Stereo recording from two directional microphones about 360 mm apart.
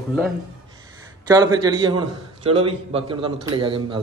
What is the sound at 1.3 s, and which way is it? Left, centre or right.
A man's voice, centre.